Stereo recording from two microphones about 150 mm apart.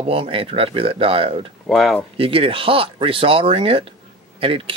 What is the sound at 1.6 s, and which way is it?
Speech, centre (ahead or behind).